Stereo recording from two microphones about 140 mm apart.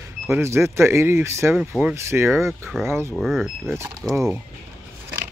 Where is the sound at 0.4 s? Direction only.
20° right (ahead or behind).